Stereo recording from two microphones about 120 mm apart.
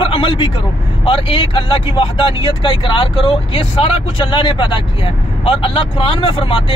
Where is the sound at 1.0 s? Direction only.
50° left (ahead or behind).